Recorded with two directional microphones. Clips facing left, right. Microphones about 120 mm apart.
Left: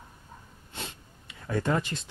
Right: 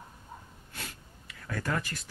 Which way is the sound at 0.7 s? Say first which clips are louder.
Left 4 dB; 25° left (ahead or behind).